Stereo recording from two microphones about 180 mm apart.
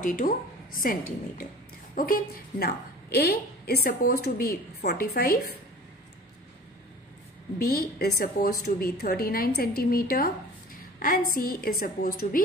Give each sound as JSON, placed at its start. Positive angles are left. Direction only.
{"t": 0.0, "sound": "a woman's voice", "side_deg": 50}
{"t": 7.5, "sound": "a woman's voice", "side_deg": 55}